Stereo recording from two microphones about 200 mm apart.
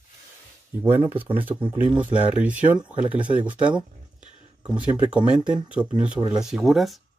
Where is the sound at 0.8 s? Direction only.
10° right (ahead or behind).